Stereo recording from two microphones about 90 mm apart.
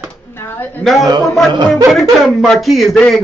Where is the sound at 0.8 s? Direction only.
Centre (ahead or behind).